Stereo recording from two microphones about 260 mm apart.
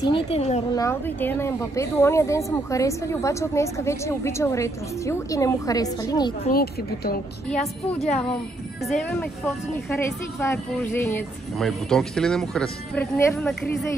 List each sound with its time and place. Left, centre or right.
0.0 s a woman's voice: left
0.7 s speech: centre
6.5 s speech: left
7.4 s speech: centre